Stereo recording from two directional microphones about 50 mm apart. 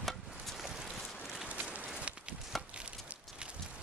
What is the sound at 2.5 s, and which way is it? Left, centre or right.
Chop, centre.